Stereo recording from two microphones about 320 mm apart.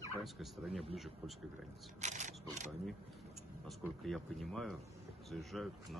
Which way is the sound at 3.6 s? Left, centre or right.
Centre.